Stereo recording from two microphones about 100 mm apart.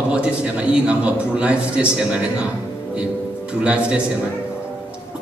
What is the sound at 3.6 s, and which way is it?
Speech, 10° right (ahead or behind).